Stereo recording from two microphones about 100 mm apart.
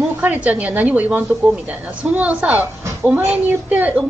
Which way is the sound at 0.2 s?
15° right (ahead or behind).